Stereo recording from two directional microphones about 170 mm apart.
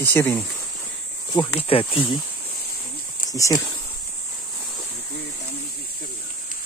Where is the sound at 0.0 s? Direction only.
10° left (ahead or behind).